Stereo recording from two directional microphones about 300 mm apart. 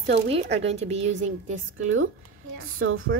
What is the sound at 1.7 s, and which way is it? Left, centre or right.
A woman's voice, right.